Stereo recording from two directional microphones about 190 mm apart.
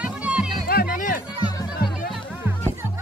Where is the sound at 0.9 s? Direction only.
45° left (ahead or behind).